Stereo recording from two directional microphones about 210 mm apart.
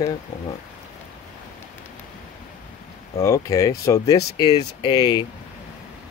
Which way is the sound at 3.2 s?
15° left (ahead or behind).